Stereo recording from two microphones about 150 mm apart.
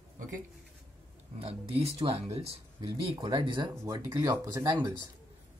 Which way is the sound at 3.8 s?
20° right (ahead or behind).